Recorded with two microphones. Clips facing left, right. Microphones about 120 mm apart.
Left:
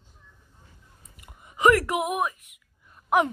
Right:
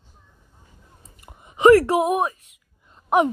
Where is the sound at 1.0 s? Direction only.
30° right (ahead or behind).